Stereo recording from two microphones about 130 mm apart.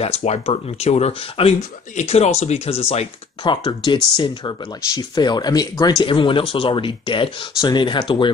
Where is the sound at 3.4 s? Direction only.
35° left (ahead or behind).